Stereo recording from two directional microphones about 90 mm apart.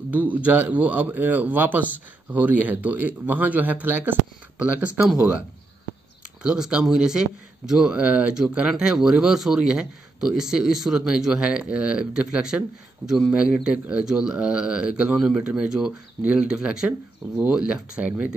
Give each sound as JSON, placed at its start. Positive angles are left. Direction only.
{"t": 0.1, "sound": "a man's voice", "side_deg": -15}
{"t": 6.4, "sound": "a man's voice", "side_deg": -10}